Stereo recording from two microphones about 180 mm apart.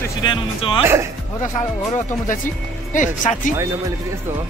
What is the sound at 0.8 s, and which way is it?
Speech, 15° right (ahead or behind).